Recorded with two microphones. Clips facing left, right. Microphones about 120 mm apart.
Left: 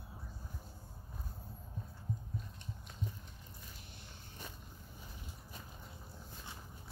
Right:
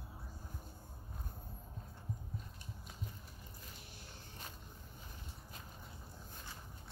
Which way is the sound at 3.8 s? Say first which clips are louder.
Even; centre (ahead or behind).